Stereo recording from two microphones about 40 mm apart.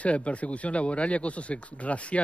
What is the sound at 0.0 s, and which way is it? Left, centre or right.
Speech, left.